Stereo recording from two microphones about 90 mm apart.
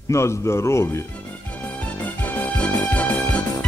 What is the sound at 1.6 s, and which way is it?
Music, 15° left (ahead or behind).